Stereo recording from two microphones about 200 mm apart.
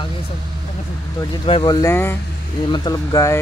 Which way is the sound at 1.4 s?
25° left (ahead or behind).